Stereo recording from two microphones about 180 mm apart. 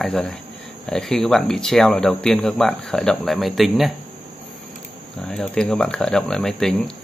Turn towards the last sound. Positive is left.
turn(degrees=5)  # may be behind; listen again after turning